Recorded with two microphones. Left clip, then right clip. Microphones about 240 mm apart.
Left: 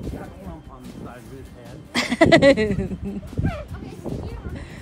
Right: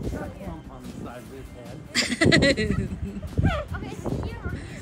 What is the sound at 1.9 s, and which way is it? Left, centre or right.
Speech, centre.